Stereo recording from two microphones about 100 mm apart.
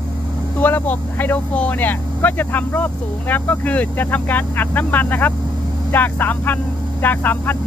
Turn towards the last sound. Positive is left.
turn(degrees=20)  # may be behind; listen again after turning